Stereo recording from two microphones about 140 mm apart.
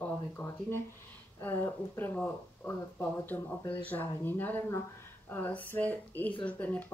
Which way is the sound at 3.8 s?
15° left (ahead or behind).